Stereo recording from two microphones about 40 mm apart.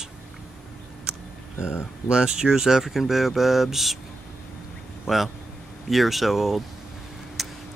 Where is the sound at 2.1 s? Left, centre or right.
Right; by 3.9 s centre.